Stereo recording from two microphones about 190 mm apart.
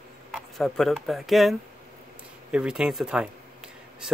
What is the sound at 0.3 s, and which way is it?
Speech, centre (ahead or behind).